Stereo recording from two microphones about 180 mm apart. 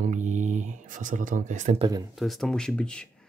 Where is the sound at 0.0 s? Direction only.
45° right (ahead or behind).